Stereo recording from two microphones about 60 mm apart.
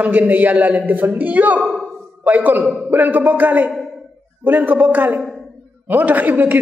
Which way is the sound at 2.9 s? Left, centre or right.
Right.